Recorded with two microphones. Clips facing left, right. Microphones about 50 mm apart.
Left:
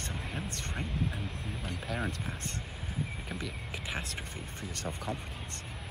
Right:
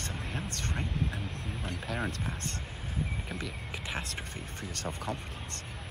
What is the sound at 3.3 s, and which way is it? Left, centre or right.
Speech, centre.